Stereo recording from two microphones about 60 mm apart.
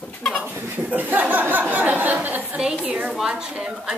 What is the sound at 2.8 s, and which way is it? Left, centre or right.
A woman's voice, centre.